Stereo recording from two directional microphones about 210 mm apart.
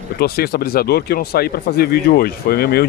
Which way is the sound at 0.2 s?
45° left (ahead or behind).